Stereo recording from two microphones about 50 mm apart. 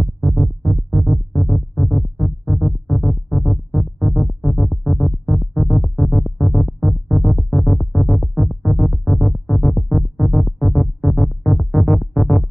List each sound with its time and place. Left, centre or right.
0.0 s music: centre
0.6 s music: left
1.3 s music: centre